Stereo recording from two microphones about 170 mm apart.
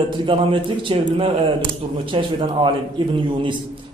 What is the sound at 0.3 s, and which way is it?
A man's voice, 30° right (ahead or behind).